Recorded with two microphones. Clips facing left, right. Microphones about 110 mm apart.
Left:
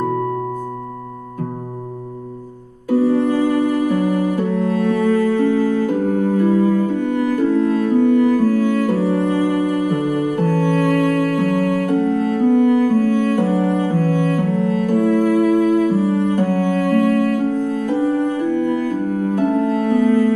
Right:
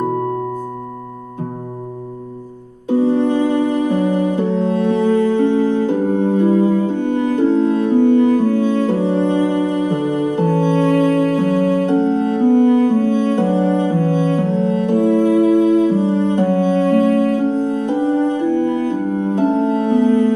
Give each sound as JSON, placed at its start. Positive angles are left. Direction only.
{"t": 2.9, "sound": "music", "side_deg": -25}